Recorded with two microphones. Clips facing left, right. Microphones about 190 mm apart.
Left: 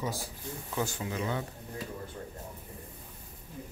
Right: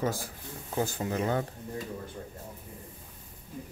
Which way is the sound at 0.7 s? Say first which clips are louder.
Right 4 dB; 40° right (ahead or behind).